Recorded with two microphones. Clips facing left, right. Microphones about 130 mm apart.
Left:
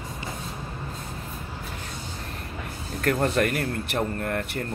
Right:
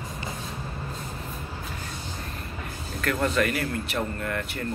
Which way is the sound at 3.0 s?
45° left (ahead or behind).